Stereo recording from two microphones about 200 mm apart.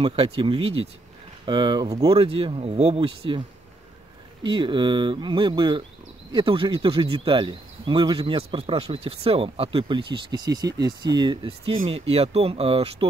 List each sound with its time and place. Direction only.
0.0 s speech: 25° right (ahead or behind)